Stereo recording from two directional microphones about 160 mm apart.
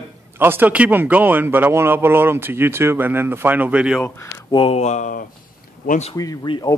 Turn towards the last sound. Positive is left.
turn(degrees=25)  # may be behind; listen again after turning